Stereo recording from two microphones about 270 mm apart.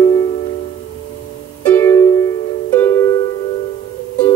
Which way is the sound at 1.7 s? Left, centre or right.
Centre.